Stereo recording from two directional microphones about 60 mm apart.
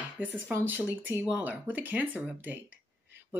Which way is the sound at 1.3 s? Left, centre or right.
Right.